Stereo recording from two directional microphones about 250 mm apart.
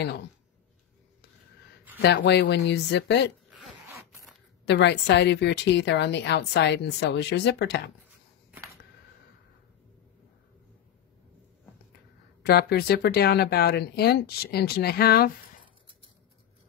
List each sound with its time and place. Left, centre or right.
2.0 s a woman's voice: left
4.6 s a woman's voice: left
12.4 s speech: left